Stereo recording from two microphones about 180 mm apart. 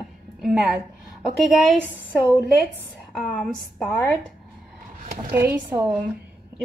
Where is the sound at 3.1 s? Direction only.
5° left (ahead or behind).